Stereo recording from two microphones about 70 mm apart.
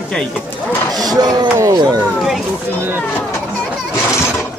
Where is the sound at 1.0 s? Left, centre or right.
Right.